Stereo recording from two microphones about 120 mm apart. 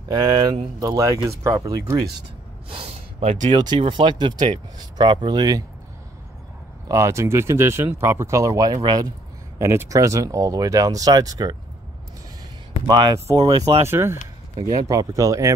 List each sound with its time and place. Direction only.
0.1 s speech: 35° right (ahead or behind)
2.7 s speech: 55° right (ahead or behind)
3.5 s speech: 40° right (ahead or behind)
6.9 s speech: 25° right (ahead or behind)
9.6 s speech: 20° right (ahead or behind)
12.8 s speech: 40° right (ahead or behind)
13.8 s speech: 20° right (ahead or behind)